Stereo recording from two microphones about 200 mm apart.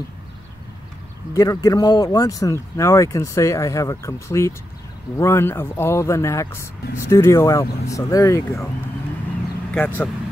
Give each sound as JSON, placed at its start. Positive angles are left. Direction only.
{"t": 1.3, "sound": "speech", "side_deg": 15}